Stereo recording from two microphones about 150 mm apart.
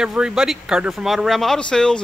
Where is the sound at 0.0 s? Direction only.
5° right (ahead or behind).